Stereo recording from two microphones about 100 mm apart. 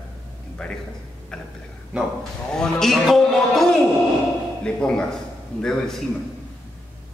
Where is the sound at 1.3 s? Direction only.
5° left (ahead or behind).